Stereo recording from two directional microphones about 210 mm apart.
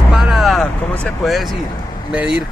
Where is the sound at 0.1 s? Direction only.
Centre (ahead or behind).